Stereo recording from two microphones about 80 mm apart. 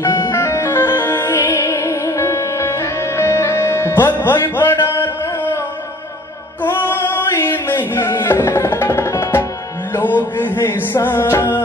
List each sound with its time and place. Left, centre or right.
0.0 s music: left
6.6 s music: left
9.9 s music: left